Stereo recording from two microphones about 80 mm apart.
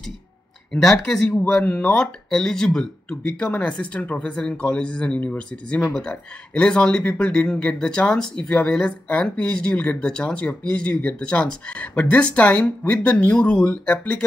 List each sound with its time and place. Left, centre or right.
0.8 s speech: centre